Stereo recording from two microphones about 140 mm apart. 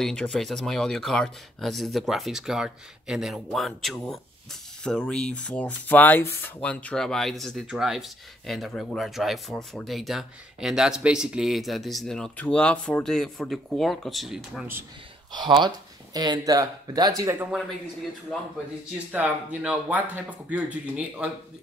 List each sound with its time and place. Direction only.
0.0 s speech: 5° left (ahead or behind)
15.3 s speech: 30° right (ahead or behind)
19.1 s speech: 10° right (ahead or behind)